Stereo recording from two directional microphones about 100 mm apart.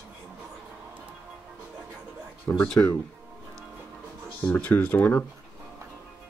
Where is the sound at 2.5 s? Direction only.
45° left (ahead or behind).